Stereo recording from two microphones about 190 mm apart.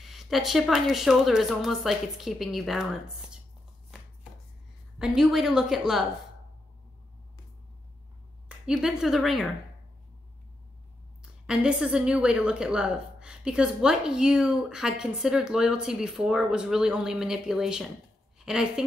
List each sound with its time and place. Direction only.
0.0 s a woman's voice: centre (ahead or behind)
4.9 s a woman's voice: 5° right (ahead or behind)
8.5 s speech: 5° right (ahead or behind)
11.4 s a woman's voice: 5° right (ahead or behind)